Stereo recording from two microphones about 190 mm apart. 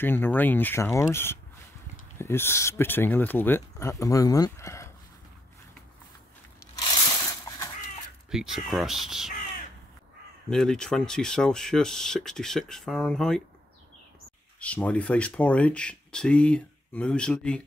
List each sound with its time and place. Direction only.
0.0 s speech: 10° left (ahead or behind)
6.7 s a sound: 20° left (ahead or behind)
8.3 s speech: centre (ahead or behind)
10.5 s speech: 5° left (ahead or behind)
14.6 s speech: 5° left (ahead or behind)